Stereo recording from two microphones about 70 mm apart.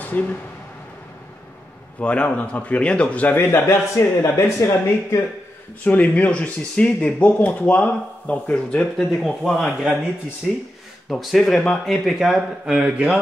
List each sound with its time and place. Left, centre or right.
0.0 s speech: left
2.0 s speech: centre
3.3 s speech: left
5.9 s speech: left
8.9 s speech: centre
11.1 s speech: centre